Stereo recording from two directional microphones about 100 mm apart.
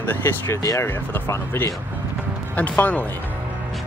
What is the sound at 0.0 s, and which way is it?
Speech, 20° left (ahead or behind).